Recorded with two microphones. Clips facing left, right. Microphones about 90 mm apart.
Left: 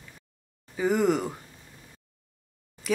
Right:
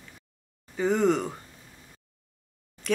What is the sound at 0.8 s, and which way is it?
Speech, 5° left (ahead or behind).